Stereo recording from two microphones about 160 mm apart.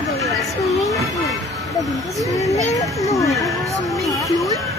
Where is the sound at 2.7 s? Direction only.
20° left (ahead or behind).